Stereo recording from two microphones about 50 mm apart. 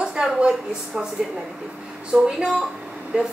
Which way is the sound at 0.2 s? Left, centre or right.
Centre.